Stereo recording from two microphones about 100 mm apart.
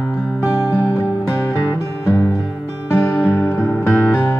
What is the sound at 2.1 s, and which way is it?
Music, 30° left (ahead or behind).